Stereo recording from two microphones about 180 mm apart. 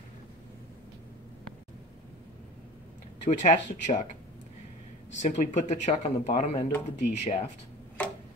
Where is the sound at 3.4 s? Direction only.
40° left (ahead or behind).